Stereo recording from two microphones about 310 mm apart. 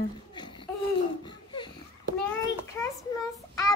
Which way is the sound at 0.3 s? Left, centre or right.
Centre.